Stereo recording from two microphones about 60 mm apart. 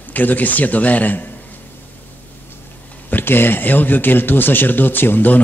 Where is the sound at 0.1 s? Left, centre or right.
Left.